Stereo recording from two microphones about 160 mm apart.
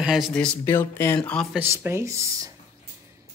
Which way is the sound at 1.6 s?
15° right (ahead or behind).